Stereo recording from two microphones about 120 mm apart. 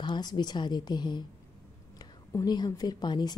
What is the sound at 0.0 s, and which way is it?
A woman's voice, 35° left (ahead or behind).